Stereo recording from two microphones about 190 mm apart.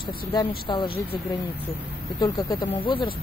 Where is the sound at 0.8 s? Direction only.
55° left (ahead or behind).